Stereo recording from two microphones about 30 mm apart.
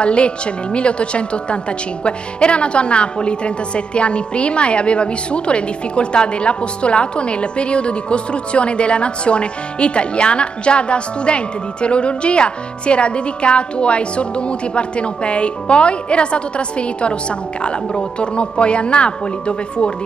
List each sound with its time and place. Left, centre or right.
0.0 s a woman's voice: left